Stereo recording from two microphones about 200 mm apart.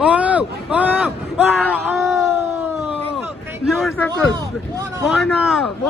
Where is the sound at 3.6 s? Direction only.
Centre (ahead or behind).